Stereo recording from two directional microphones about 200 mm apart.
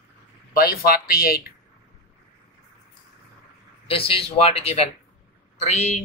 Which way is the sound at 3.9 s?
30° left (ahead or behind).